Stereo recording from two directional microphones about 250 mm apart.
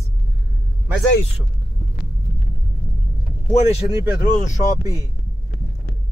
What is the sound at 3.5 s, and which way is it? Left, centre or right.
Speech, left.